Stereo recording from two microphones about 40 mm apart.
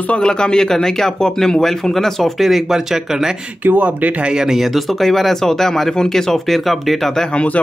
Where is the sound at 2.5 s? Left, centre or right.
Centre.